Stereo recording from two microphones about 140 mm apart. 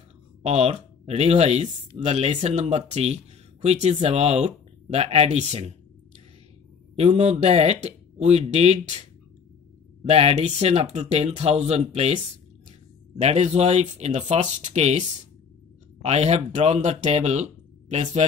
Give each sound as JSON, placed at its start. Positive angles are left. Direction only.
{"t": 0.4, "sound": "speech", "side_deg": -50}
{"t": 7.0, "sound": "speech", "side_deg": -50}
{"t": 10.0, "sound": "speech", "side_deg": -45}
{"t": 13.2, "sound": "speech", "side_deg": -50}